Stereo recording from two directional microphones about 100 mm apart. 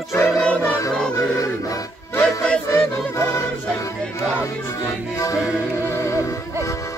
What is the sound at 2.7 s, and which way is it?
Music, 30° left (ahead or behind).